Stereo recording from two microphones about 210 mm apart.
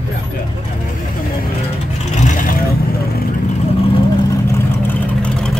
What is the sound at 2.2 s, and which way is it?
Vehicle, 40° left (ahead or behind).